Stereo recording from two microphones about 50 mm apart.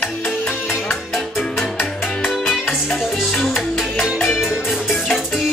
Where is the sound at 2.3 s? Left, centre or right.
Centre.